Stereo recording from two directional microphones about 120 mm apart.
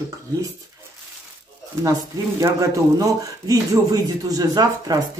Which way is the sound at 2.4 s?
30° right (ahead or behind).